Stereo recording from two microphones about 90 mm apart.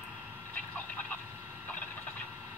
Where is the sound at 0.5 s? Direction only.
15° left (ahead or behind).